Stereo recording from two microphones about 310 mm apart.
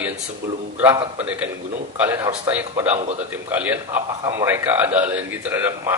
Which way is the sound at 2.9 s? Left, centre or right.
Centre.